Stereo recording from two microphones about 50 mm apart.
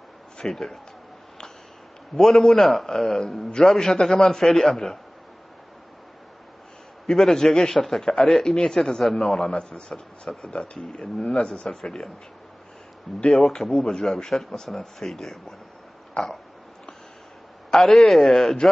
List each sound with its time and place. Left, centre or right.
0.4 s speech: centre
2.1 s speech: centre
7.1 s speech: centre
13.3 s speech: centre
17.7 s speech: centre